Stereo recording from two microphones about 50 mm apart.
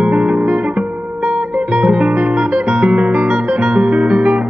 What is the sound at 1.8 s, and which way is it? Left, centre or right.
Music, right.